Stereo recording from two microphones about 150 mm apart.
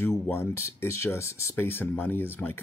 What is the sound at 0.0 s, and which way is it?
Speech, 15° left (ahead or behind).